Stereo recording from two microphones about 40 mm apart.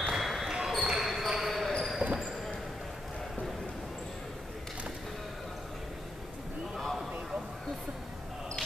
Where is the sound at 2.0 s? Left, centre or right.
Right.